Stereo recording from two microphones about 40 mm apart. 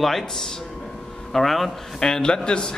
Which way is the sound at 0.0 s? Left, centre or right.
Centre.